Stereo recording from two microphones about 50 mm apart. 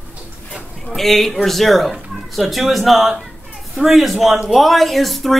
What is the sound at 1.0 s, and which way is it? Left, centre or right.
Speech, centre.